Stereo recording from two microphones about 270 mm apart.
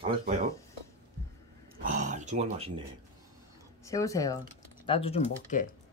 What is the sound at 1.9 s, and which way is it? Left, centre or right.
Speech, right.